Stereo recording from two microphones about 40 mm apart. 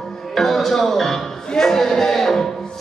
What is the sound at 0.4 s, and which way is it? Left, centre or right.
Speech, centre.